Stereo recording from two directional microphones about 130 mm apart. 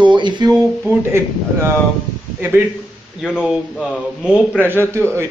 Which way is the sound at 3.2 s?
5° right (ahead or behind).